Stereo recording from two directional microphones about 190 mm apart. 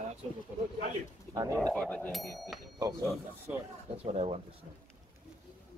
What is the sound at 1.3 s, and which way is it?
Speech, 20° right (ahead or behind).